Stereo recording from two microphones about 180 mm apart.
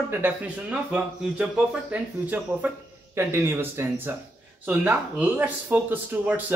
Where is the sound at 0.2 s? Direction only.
5° right (ahead or behind).